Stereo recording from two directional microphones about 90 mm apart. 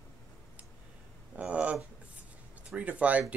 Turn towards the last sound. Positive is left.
turn(degrees=-15)  # may be behind; listen again after turning